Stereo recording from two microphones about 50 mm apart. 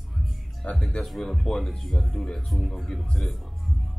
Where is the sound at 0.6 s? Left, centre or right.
Centre.